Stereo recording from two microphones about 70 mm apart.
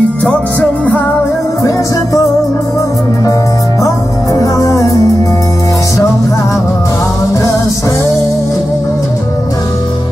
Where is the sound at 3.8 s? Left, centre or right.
Left.